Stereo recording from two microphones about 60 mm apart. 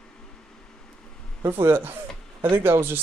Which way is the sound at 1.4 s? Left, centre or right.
Right.